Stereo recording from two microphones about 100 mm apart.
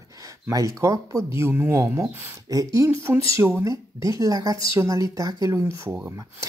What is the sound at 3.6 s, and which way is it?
A woman's voice, 35° right (ahead or behind).